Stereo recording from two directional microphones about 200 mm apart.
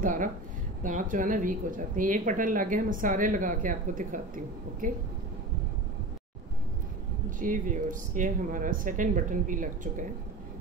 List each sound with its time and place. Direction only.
0.0 s speech: 40° right (ahead or behind)
7.2 s speech: 40° right (ahead or behind)